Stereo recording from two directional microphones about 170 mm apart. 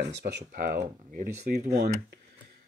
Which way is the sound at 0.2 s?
75° right (ahead or behind).